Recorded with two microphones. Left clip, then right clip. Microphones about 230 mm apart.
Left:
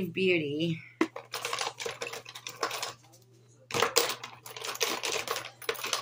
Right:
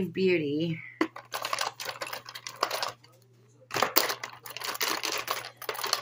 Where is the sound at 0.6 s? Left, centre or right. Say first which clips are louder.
Even; centre.